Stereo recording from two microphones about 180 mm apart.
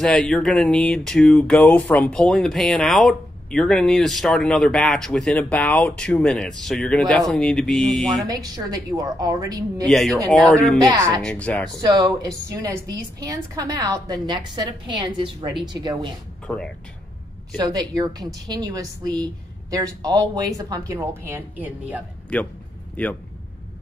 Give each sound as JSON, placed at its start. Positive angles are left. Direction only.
{"t": 0.0, "sound": "a sound", "side_deg": 0}
{"t": 8.3, "sound": "a woman's voice", "side_deg": -20}
{"t": 9.8, "sound": "a sound", "side_deg": 0}
{"t": 10.9, "sound": "speech", "side_deg": -15}
{"t": 11.2, "sound": "speech", "side_deg": 5}
{"t": 11.8, "sound": "a woman's voice", "side_deg": -20}
{"t": 16.4, "sound": "speech", "side_deg": 5}
{"t": 17.6, "sound": "a woman's voice", "side_deg": -20}
{"t": 23.0, "sound": "speech", "side_deg": 10}